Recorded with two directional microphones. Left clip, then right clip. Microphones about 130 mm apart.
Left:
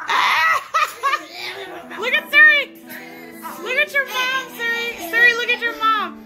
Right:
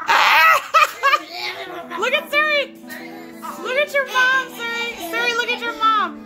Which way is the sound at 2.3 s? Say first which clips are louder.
Left 10 dB; 25° right (ahead or behind).